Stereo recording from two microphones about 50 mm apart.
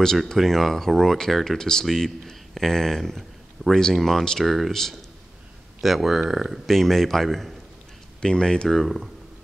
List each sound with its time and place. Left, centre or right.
0.2 s speech: centre
6.6 s speech: centre
8.2 s speech: centre
8.6 s speech: centre